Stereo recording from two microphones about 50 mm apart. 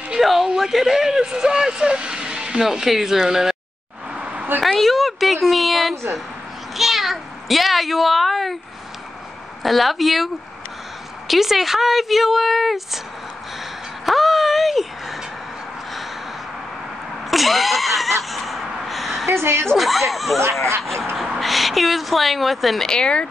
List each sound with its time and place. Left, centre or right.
0.2 s a sound: centre
0.6 s speech: centre
2.6 s speech: centre
4.1 s a sound: right
4.6 s a child's voice: centre
9.6 s speech: centre
14.0 s a sound: centre
17.3 s speech: centre
18.3 s gasp: centre
19.2 s a woman's voice: right
19.8 s speech: centre
22.8 s speech: centre